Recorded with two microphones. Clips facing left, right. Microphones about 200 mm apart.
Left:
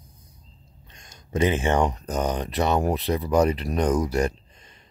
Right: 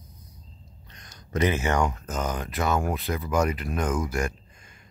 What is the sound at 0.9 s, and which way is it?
Speech, 25° left (ahead or behind).